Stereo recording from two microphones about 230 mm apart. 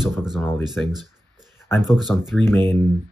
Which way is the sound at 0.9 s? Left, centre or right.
Centre.